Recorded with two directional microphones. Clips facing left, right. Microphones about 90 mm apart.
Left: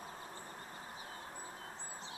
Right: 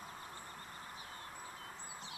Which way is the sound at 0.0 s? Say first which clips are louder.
Left 1 dB; 20° left (ahead or behind).